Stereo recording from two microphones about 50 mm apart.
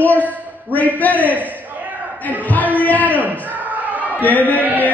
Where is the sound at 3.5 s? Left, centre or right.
Right.